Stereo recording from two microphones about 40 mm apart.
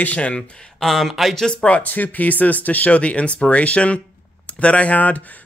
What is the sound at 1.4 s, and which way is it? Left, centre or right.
Speech, centre.